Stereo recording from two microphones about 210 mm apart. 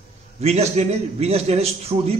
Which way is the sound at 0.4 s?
30° right (ahead or behind).